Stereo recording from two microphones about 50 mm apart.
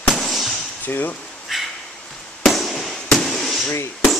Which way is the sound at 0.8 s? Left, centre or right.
Left.